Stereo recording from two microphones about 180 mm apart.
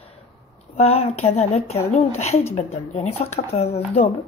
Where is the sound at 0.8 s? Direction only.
35° left (ahead or behind).